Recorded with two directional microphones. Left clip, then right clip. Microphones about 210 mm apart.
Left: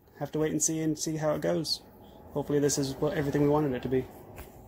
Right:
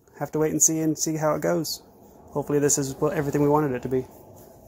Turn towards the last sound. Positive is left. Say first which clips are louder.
# right 5 dB
turn(degrees=-20)  # may be behind; listen again after turning